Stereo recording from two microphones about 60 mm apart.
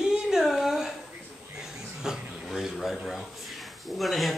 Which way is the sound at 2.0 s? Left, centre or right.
Centre.